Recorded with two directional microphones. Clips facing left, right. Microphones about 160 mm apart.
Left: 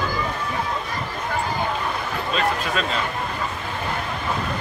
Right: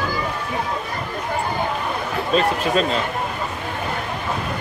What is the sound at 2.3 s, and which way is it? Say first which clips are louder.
Speech: right 6 dB; 35° right (ahead or behind).